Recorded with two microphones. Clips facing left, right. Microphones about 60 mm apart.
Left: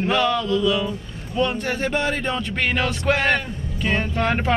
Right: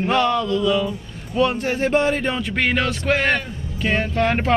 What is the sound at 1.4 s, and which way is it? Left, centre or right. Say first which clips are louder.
Speech: right 3 dB; centre.